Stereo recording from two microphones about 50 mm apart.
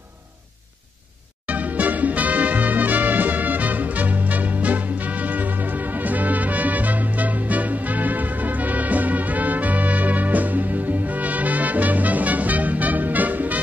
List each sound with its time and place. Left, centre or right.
1.4 s music: right